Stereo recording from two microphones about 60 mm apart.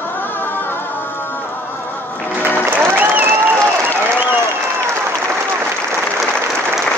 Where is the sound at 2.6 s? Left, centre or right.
Right.